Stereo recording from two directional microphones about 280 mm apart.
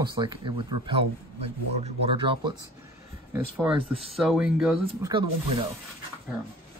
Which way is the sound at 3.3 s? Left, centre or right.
Centre.